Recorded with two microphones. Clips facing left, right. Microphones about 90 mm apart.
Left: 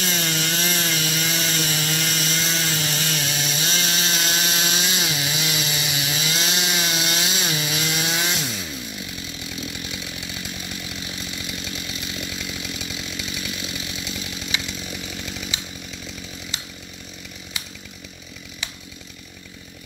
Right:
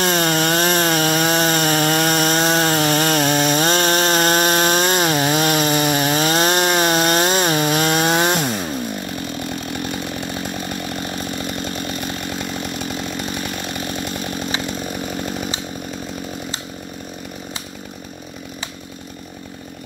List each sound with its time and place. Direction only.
0.0 s wood: 50° right (ahead or behind)